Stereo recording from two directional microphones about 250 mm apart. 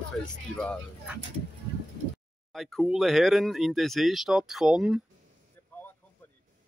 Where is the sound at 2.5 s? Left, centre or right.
Centre.